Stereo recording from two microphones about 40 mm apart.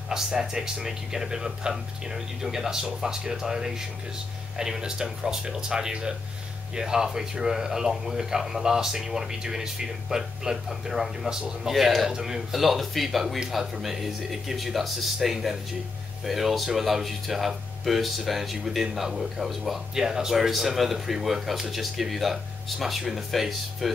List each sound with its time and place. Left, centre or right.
0.1 s speech: centre
11.7 s speech: centre
12.1 s speech: centre
12.4 s speech: centre
20.0 s speech: centre
20.3 s speech: centre